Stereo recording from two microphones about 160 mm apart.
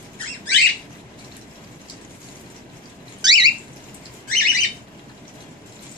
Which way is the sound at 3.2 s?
25° right (ahead or behind).